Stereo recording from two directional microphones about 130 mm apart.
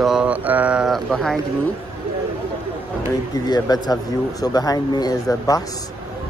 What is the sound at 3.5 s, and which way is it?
Speech, 30° left (ahead or behind).